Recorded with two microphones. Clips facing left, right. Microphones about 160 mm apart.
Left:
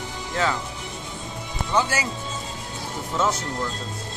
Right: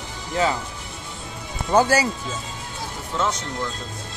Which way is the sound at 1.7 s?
40° right (ahead or behind).